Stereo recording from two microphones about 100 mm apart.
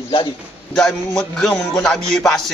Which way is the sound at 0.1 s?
60° left (ahead or behind).